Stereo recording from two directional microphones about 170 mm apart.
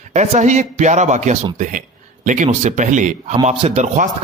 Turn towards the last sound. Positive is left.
turn(degrees=-40)  # may be behind; listen again after turning